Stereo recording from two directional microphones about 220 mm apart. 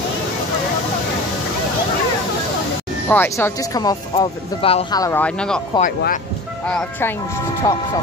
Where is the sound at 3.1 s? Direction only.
10° left (ahead or behind).